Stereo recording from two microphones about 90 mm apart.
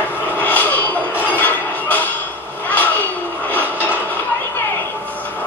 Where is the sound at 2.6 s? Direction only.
20° left (ahead or behind).